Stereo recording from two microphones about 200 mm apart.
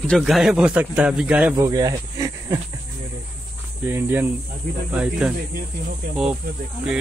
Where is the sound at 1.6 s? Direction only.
15° right (ahead or behind).